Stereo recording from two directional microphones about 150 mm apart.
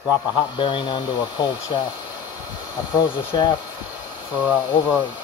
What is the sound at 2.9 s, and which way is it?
Speech, 30° left (ahead or behind).